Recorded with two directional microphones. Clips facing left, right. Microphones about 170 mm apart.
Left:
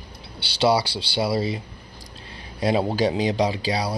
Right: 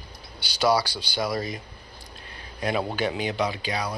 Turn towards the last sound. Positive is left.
turn(degrees=35)  # may be behind; listen again after turning